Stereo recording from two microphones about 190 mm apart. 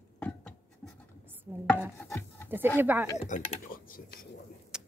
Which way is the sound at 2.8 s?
10° right (ahead or behind).